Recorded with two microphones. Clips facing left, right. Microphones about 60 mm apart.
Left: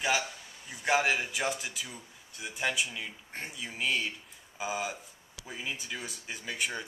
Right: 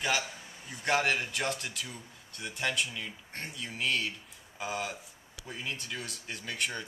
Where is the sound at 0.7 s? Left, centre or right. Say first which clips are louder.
Left 1 dB; centre.